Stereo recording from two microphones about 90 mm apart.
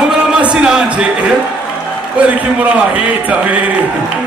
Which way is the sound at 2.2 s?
15° right (ahead or behind).